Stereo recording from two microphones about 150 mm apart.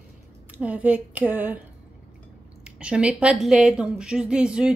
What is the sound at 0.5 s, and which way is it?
A woman's voice, 10° right (ahead or behind).